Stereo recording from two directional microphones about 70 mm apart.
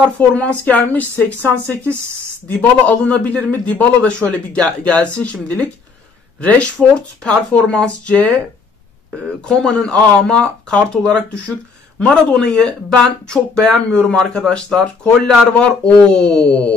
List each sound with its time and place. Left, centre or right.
0.0 s a man's voice: centre
9.5 s speech: centre